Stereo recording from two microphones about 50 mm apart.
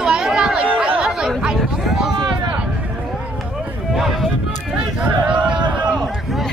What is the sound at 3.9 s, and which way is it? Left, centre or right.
Speech, centre.